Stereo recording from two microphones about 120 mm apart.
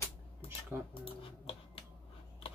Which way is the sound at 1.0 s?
50° left (ahead or behind).